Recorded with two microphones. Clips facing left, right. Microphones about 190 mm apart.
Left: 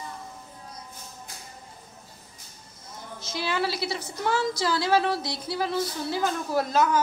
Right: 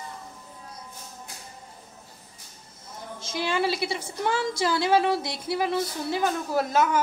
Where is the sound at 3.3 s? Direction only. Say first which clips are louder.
Right 2 dB; 15° right (ahead or behind).